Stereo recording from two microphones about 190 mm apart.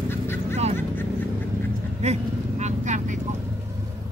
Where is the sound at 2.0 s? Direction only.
35° right (ahead or behind).